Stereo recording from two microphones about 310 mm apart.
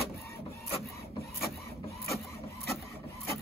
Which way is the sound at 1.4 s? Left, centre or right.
Centre.